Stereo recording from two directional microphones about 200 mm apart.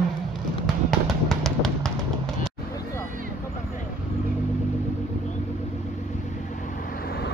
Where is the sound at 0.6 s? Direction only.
Centre (ahead or behind).